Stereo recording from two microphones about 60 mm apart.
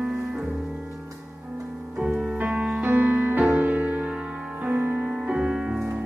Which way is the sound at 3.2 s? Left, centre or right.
Right.